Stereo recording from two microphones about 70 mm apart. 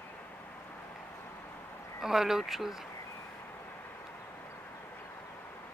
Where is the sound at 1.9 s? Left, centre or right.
Centre.